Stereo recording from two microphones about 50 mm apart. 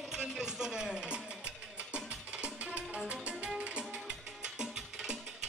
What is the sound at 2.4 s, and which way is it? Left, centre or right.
Music, right.